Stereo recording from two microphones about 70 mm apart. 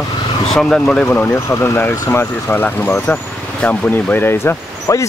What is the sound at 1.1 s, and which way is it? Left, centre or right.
Speech, left.